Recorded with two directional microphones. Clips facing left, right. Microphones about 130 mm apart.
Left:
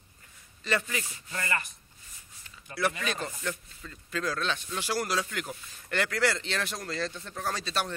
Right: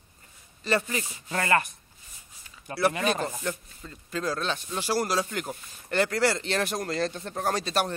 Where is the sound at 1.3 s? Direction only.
65° right (ahead or behind).